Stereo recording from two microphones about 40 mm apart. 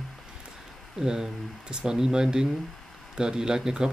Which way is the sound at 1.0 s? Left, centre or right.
Centre.